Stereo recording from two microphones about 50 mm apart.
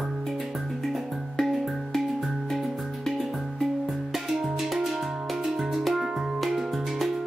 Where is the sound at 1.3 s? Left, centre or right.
Centre.